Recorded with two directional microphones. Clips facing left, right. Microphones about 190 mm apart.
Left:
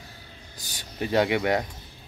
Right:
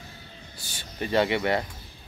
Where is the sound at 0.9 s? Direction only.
10° left (ahead or behind).